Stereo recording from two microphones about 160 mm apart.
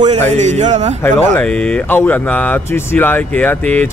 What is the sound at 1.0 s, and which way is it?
Speech, 10° left (ahead or behind).